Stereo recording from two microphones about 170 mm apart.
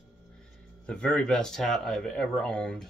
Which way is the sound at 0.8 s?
5° left (ahead or behind).